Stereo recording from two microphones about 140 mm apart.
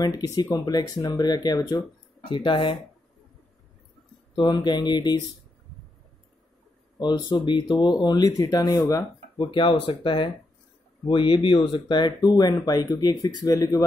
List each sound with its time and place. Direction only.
0.0 s speech: 25° left (ahead or behind)
4.4 s speech: 30° left (ahead or behind)
7.0 s speech: 30° left (ahead or behind)